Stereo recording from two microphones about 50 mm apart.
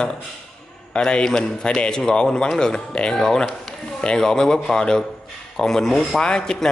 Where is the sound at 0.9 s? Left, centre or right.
Centre.